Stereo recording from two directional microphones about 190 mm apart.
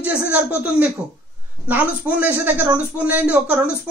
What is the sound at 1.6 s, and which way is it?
A man's voice, 10° right (ahead or behind).